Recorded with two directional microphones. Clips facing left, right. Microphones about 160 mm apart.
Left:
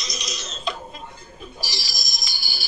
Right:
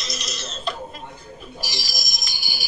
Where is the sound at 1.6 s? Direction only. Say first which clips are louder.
Right 2 dB; 15° right (ahead or behind).